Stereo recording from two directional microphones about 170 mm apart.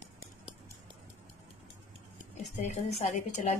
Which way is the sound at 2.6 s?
45° left (ahead or behind).